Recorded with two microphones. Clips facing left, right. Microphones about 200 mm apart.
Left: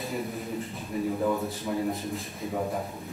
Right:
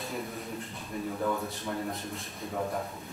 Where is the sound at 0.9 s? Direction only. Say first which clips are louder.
Left 4 dB; 5° left (ahead or behind).